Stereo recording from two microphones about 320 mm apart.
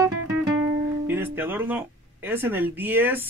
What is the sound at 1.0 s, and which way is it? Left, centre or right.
Speech, centre.